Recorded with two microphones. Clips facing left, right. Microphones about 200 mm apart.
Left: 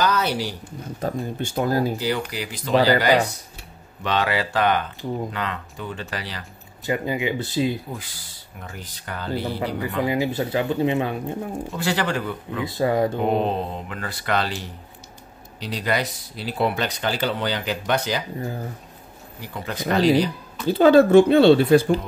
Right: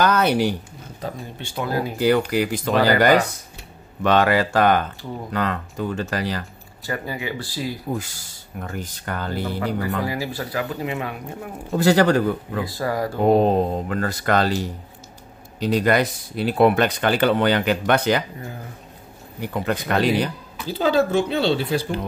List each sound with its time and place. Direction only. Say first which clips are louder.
0.0 s speech: right 4 dB; 55° right (ahead or behind)
1.4 s speech: left 3 dB; 45° left (ahead or behind)
2.0 s speech: right 7 dB; 55° right (ahead or behind)
6.9 s speech: left 4 dB; 20° left (ahead or behind)
8.0 s speech: right 4 dB; 45° right (ahead or behind)
10.0 s speech: left 4 dB; 20° left (ahead or behind)
11.7 s speech: right 9 dB; 40° right (ahead or behind)
12.6 s speech: left 6 dB; 20° left (ahead or behind)
13.3 s speech: right 6 dB; 45° right (ahead or behind); by 18.2 s 60° right (ahead or behind)
19.4 s speech: right 4 dB; 55° right (ahead or behind)
20.6 s speech: left 6 dB; 55° left (ahead or behind)